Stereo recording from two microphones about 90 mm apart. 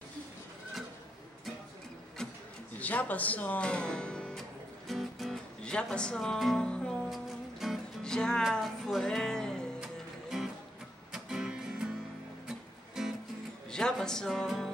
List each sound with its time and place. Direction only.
2.2 s printer: 5° left (ahead or behind)
2.8 s music: 15° left (ahead or behind); by 5.4 s centre (ahead or behind)
5.6 s speech: 10° left (ahead or behind)
7.6 s music: 5° right (ahead or behind)
8.0 s music: 10° left (ahead or behind)
10.3 s music: 5° right (ahead or behind)
13.7 s music: 10° left (ahead or behind)